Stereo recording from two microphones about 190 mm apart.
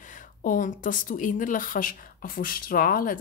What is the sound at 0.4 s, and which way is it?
Speech, 45° left (ahead or behind).